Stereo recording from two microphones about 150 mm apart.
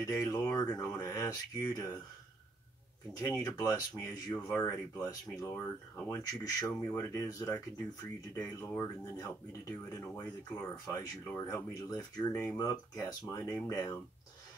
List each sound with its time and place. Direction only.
0.0 s speech: 25° left (ahead or behind)
3.2 s speech: 20° left (ahead or behind)